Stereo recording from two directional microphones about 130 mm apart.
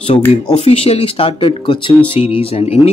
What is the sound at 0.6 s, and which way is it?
Speech, 50° left (ahead or behind).